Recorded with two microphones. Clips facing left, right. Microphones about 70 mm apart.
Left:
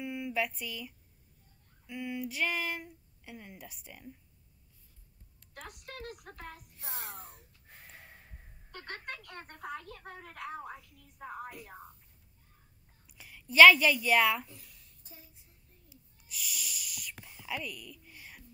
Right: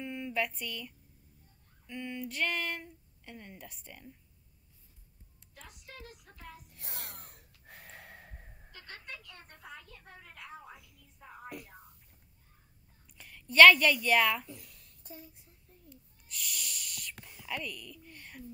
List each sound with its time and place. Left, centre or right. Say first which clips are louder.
0.0 s speech: left 1 dB; centre
5.5 s a child's voice: left 5 dB; left
7.0 s wheeze: left 4 dB; right
8.7 s a child's voice: left 5 dB; left
13.0 s a woman's voice: even; centre
14.5 s a sound: right 6 dB; right
15.9 s a sound: right 1 dB; centre